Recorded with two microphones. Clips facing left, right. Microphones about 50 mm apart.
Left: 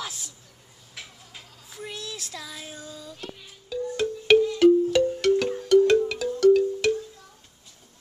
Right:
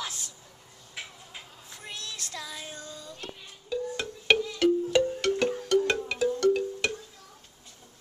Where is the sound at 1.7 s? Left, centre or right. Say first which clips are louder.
Left 5 dB; centre.